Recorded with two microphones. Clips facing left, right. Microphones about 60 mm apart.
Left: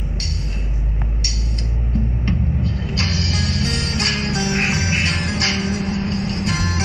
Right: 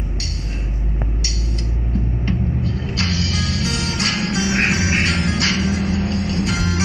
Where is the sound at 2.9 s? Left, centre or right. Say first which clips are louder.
Right 1 dB; left.